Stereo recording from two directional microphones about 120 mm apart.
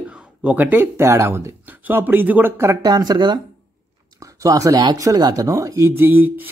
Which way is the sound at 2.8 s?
35° right (ahead or behind).